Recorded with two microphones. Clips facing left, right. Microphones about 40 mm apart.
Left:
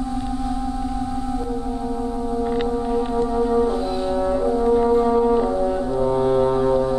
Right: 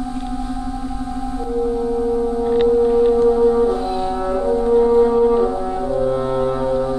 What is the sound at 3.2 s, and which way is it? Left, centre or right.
French horn, centre.